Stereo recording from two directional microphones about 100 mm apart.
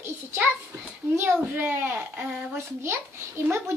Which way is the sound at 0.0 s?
25° right (ahead or behind).